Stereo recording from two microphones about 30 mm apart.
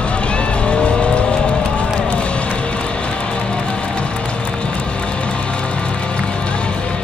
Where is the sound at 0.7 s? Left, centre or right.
Left.